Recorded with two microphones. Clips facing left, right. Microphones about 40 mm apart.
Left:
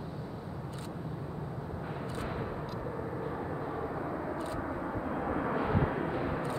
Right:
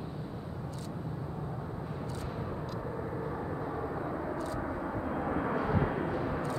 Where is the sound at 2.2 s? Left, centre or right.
Left.